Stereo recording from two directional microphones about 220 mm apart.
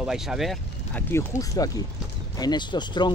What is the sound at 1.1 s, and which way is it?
Speech, 15° left (ahead or behind).